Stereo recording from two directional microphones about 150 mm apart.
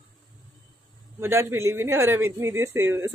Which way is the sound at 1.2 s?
15° right (ahead or behind).